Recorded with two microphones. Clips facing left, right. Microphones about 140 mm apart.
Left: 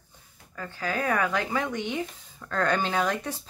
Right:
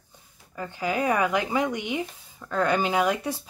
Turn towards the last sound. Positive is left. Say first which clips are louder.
# right 3 dB
turn(degrees=-10)  # may be behind; listen again after turning